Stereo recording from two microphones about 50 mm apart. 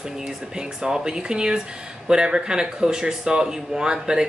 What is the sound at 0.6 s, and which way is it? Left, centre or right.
Speech, centre.